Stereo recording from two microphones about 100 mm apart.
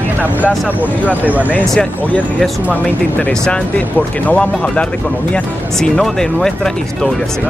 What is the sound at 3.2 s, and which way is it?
Speech, 10° left (ahead or behind).